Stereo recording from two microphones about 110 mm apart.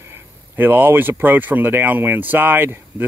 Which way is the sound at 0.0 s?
20° right (ahead or behind).